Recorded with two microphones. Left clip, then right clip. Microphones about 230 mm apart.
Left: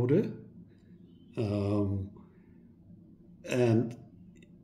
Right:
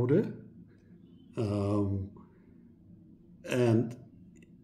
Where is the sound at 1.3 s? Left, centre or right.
Centre.